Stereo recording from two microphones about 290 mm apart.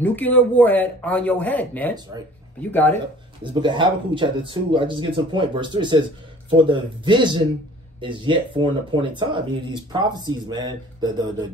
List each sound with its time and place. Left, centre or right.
0.0 s speech: centre
3.6 s speech: centre